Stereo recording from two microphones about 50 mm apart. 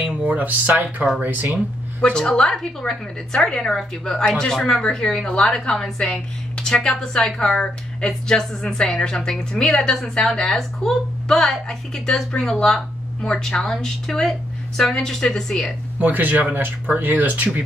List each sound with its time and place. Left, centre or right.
0.0 s speech: right
2.1 s a woman's voice: centre
16.0 s speech: right